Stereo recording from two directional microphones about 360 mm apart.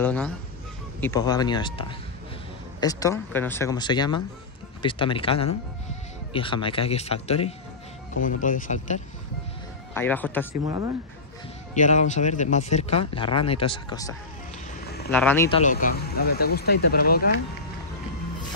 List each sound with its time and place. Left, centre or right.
0.0 s speech: centre
9.9 s speech: centre
10.6 s speech: centre
11.7 s speech: centre
15.6 s speech: left